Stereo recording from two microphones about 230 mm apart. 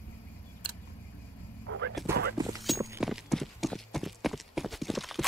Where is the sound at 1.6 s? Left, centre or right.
Right.